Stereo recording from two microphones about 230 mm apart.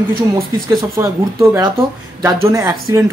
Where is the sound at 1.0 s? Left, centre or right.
Centre.